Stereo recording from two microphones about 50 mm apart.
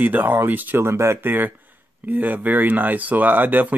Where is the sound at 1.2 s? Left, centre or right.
Right.